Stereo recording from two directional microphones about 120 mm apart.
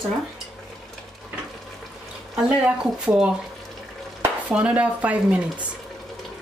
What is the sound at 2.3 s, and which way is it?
Speech, 10° right (ahead or behind).